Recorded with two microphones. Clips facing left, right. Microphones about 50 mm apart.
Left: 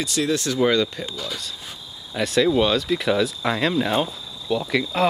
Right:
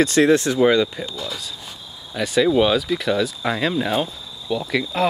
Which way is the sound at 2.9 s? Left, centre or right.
Centre.